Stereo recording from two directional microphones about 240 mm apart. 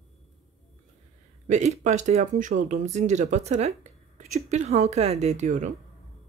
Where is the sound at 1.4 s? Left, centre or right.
Right.